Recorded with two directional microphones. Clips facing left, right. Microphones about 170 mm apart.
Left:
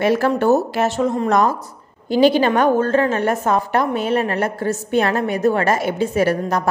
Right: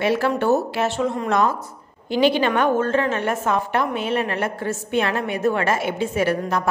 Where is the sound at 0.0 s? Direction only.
45° left (ahead or behind).